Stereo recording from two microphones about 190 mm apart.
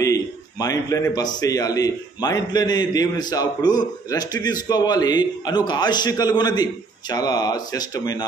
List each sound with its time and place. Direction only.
0.0 s a man's voice: 20° left (ahead or behind)